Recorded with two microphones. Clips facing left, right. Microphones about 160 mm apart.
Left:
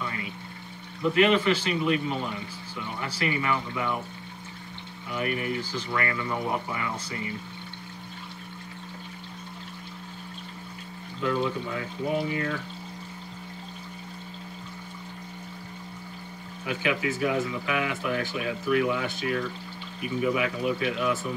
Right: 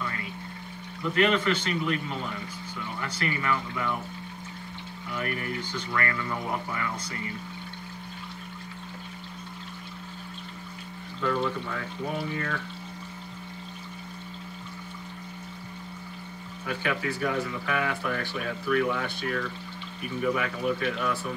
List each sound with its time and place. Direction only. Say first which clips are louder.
1.0 s speech: left 3 dB; 15° left (ahead or behind)
3.0 s speech: left 3 dB; 15° left (ahead or behind)
5.1 s speech: left 3 dB; 15° left (ahead or behind)
11.2 s speech: left 1 dB; 10° left (ahead or behind)
16.6 s speech: left 2 dB; 15° left (ahead or behind)